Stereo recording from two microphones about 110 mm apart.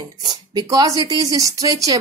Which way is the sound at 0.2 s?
40° right (ahead or behind).